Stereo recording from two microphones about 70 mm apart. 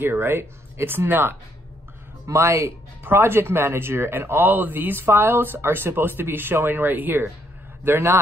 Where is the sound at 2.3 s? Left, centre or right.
Right.